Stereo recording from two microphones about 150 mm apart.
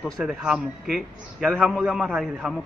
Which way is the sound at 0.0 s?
5° right (ahead or behind).